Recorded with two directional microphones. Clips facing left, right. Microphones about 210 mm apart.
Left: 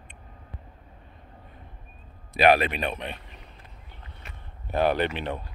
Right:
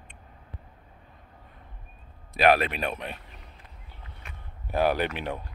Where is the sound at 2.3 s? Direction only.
Centre (ahead or behind).